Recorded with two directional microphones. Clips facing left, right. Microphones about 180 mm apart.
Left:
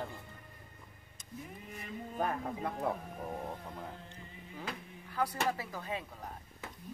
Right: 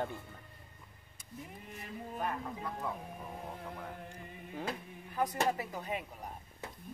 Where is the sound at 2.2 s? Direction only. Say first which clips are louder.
Left 4 dB; 60° left (ahead or behind).